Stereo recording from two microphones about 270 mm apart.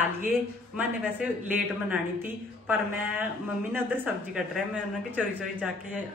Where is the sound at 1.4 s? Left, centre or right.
Centre.